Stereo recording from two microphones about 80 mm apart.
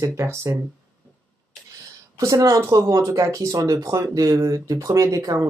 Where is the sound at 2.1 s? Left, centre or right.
Right.